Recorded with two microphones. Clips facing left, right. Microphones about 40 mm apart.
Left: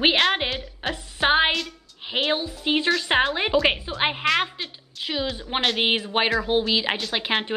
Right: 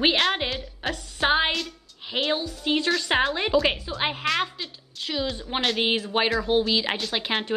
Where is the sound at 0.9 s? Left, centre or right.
Left.